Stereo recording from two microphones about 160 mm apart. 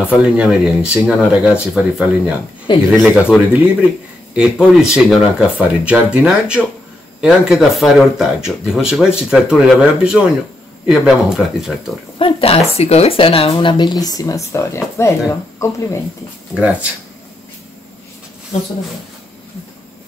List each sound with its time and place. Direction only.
0.2 s speech: 5° right (ahead or behind)
12.2 s speech: 35° left (ahead or behind); by 16.0 s 20° left (ahead or behind)